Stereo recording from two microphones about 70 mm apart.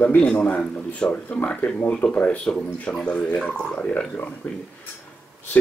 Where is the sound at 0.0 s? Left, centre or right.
Left.